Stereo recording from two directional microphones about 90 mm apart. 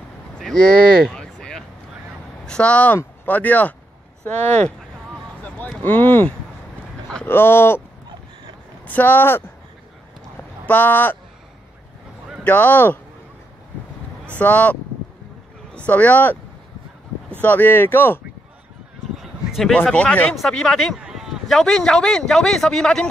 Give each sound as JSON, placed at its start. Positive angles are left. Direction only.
{"t": 0.4, "sound": "speech", "side_deg": 10}
{"t": 1.1, "sound": "a sound", "side_deg": 10}
{"t": 2.4, "sound": "speech", "side_deg": 10}
{"t": 5.4, "sound": "a sound", "side_deg": 15}
{"t": 7.2, "sound": "speech", "side_deg": 25}
{"t": 8.8, "sound": "speech", "side_deg": 20}
{"t": 10.7, "sound": "speech", "side_deg": 20}
{"t": 12.4, "sound": "speech", "side_deg": 20}
{"t": 14.4, "sound": "speech", "side_deg": 15}
{"t": 17.4, "sound": "speech", "side_deg": 20}
{"t": 19.7, "sound": "speech", "side_deg": 10}
{"t": 21.0, "sound": "a sound", "side_deg": -5}
{"t": 21.5, "sound": "speech", "side_deg": 5}